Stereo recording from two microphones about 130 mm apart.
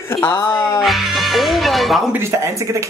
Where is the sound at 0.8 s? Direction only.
Centre (ahead or behind).